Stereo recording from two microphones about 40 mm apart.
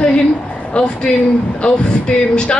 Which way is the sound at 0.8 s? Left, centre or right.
Left.